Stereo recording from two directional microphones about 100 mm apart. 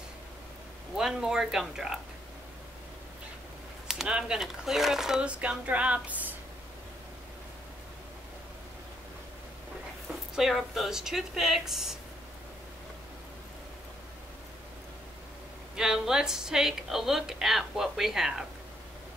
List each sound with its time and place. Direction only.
0.9 s a woman's voice: 5° right (ahead or behind)
3.8 s a woman's voice: 5° right (ahead or behind)
10.3 s a woman's voice: centre (ahead or behind)
15.7 s a woman's voice: 5° right (ahead or behind)